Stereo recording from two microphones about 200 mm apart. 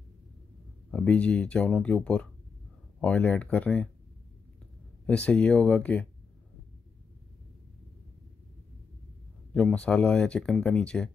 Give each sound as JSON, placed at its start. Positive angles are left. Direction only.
{"t": 0.9, "sound": "speech", "side_deg": 5}
{"t": 5.0, "sound": "speech", "side_deg": 5}
{"t": 9.5, "sound": "speech", "side_deg": 5}